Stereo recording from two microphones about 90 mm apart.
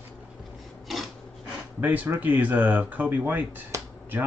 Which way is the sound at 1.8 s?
20° right (ahead or behind).